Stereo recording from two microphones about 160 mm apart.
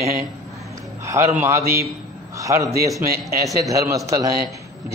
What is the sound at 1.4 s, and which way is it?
A man's voice, 15° right (ahead or behind).